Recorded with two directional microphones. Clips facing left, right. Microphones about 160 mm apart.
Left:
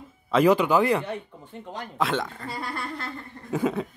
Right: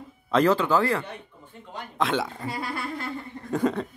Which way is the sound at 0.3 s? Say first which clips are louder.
Left 2 dB; 10° left (ahead or behind).